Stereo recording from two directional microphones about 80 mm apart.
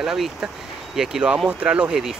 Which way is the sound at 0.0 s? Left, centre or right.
Centre.